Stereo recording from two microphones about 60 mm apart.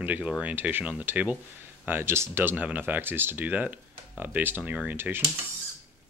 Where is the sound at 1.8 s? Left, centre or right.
Right.